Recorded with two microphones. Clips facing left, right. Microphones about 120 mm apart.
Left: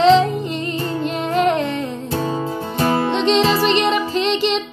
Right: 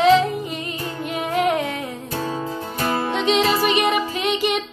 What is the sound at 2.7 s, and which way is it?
Music, 25° left (ahead or behind).